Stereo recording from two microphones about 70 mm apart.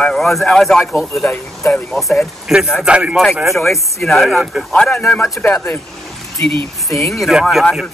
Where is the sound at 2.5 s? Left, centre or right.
Centre.